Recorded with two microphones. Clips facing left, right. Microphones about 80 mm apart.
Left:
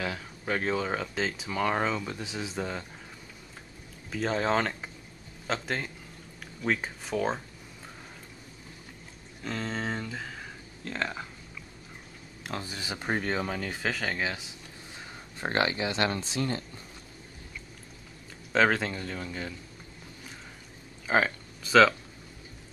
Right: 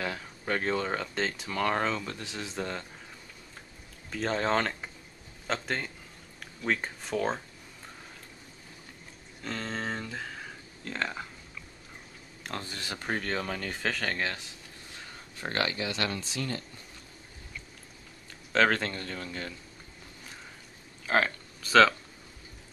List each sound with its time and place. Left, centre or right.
0.0 s speech: centre
4.1 s speech: centre
9.4 s speech: centre
12.4 s speech: centre
15.0 s speech: left
18.5 s speech: centre
21.1 s speech: centre